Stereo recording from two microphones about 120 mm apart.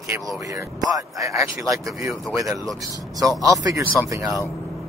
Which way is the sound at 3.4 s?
30° right (ahead or behind).